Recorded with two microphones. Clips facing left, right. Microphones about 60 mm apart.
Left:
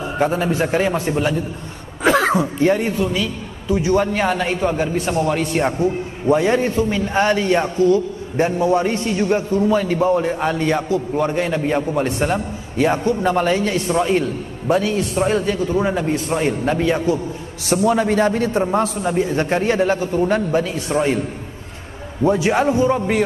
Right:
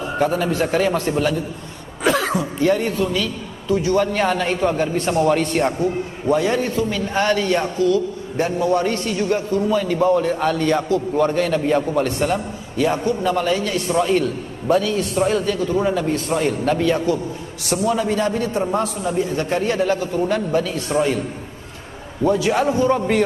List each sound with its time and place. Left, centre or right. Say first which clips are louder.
0.2 s a man's voice: left 1 dB; left
2.0 s a man's voice: left 3 dB; left; by 5.6 s centre
5.6 s a man's voice: left 1 dB; centre
9.7 s a man's voice: even; left; by 12.1 s centre
12.2 s a man's voice: left 1 dB; left
17.8 s a man's voice: left 3 dB; left
22.2 s a man's voice: left 1 dB; left
22.9 s a man's voice: even; centre